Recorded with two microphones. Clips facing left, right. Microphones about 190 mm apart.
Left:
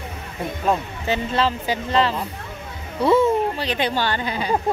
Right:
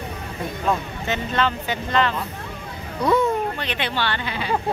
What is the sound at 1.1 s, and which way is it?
Speech, 35° left (ahead or behind).